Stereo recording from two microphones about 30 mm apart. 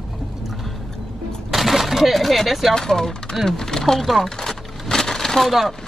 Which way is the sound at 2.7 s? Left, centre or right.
Centre.